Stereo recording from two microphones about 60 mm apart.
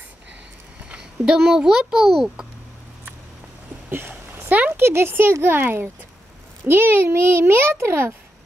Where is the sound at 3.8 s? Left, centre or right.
Right.